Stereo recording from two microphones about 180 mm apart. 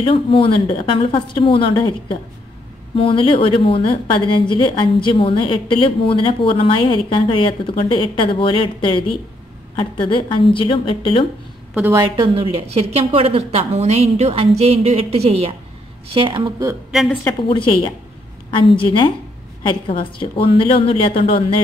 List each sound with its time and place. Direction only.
0.0 s a woman's voice: 30° left (ahead or behind)
11.9 s speech: 20° right (ahead or behind)
12.4 s speech: 35° right (ahead or behind)
16.9 s a woman's voice: centre (ahead or behind)
17.5 s a woman's voice: 30° left (ahead or behind)